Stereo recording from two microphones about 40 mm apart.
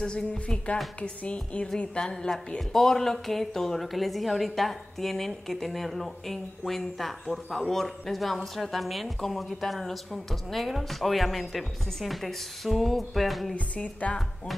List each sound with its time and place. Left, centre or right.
0.0 s a woman's voice: centre
1.0 s a woman's voice: left
2.0 s speech: centre
13.7 s speech: left